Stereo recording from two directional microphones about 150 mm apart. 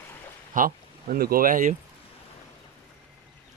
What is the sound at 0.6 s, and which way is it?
Speech, 70° right (ahead or behind).